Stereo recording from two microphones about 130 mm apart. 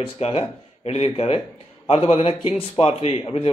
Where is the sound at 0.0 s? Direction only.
45° left (ahead or behind).